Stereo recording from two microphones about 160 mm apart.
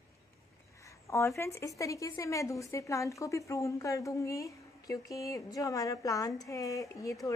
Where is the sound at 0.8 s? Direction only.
20° left (ahead or behind).